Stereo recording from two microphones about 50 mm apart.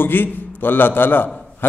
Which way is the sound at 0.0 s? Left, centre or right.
Left.